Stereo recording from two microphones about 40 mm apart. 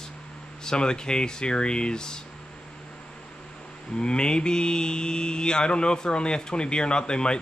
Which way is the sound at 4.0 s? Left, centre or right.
Left.